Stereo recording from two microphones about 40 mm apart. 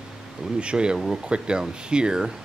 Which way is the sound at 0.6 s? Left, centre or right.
Right.